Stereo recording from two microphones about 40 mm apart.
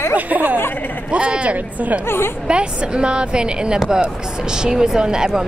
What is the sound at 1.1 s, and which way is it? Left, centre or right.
A woman's voice, right.